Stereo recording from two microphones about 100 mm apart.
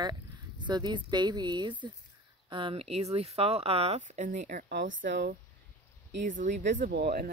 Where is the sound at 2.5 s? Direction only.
65° right (ahead or behind); by 4.0 s 85° right.